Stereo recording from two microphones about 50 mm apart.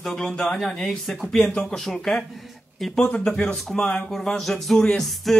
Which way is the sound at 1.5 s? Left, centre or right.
Centre.